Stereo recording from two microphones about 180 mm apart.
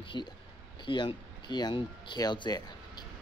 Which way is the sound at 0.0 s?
25° left (ahead or behind).